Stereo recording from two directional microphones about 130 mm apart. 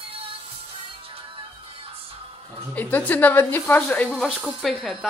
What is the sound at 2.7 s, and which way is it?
A woman's voice, 15° left (ahead or behind).